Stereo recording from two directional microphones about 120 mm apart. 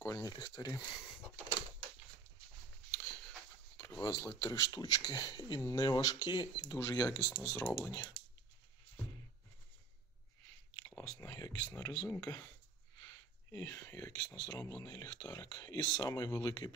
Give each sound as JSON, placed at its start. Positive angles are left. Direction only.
{"t": 0.0, "sound": "speech", "side_deg": 25}
{"t": 0.3, "sound": "speech", "side_deg": 35}
{"t": 2.9, "sound": "a sound", "side_deg": 10}
{"t": 3.8, "sound": "speech", "side_deg": 25}
{"t": 10.7, "sound": "a sound", "side_deg": 30}
{"t": 13.0, "sound": "speech", "side_deg": 30}